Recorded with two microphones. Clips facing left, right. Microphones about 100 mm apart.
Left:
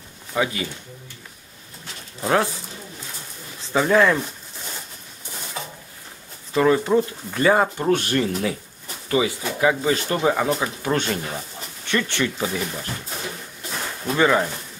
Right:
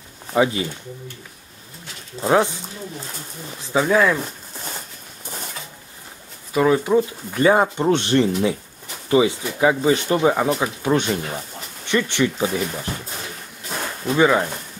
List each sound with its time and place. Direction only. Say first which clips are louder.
0.3 s speech: right 5 dB; 25° right (ahead or behind)
2.2 s speech: right 3 dB; 15° right (ahead or behind)
3.7 s speech: even; 5° right (ahead or behind)
6.5 s speech: right 1 dB; 5° right (ahead or behind)
14.1 s speech: right 2 dB; 10° right (ahead or behind)